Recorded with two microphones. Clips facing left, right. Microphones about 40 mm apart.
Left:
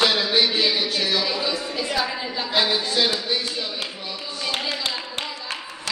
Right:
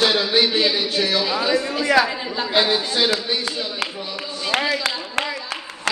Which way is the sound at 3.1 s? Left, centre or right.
Right.